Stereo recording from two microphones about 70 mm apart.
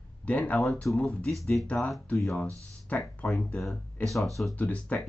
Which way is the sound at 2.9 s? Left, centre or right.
Left.